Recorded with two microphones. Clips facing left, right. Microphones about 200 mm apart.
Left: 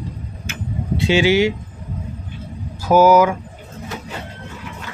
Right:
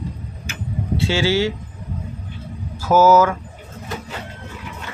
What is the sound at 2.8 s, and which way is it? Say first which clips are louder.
Speech: left 1 dB; 15° left (ahead or behind).